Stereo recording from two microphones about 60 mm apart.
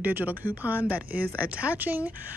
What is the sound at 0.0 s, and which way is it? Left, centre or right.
A woman's voice, right.